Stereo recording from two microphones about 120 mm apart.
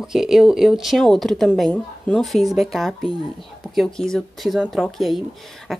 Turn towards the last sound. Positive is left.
turn(degrees=0)  # may be behind; listen again after turning